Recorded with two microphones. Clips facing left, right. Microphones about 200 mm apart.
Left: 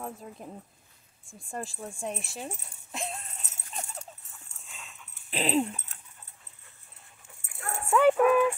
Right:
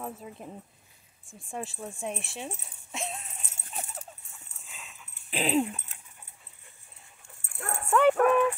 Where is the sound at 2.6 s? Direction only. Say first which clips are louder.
Even; centre (ahead or behind).